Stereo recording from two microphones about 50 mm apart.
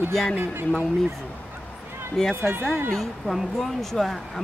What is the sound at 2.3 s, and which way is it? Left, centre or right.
Speech, right.